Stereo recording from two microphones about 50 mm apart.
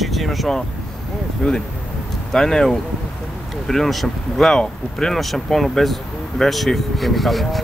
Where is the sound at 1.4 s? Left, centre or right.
Centre.